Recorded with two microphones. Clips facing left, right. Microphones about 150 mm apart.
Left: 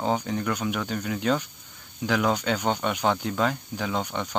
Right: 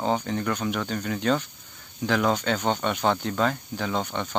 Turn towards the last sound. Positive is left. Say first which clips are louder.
# right 1 dB
turn(degrees=10)  # may be behind; listen again after turning